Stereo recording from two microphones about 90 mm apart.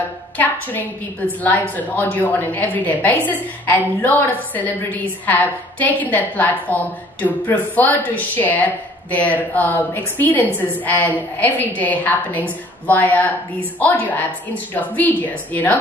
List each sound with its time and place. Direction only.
1.8 s a woman's voice: 15° left (ahead or behind)